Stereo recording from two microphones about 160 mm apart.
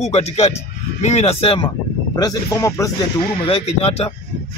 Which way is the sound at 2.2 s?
20° left (ahead or behind).